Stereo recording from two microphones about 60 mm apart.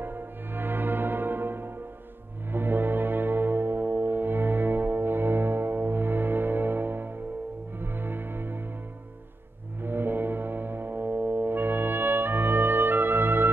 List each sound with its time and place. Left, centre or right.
0.0 s music: right
9.8 s music: right